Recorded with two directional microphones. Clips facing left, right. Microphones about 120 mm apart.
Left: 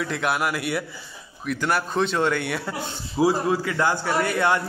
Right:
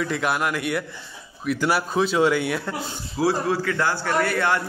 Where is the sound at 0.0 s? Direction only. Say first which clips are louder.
Right 1 dB; centre (ahead or behind).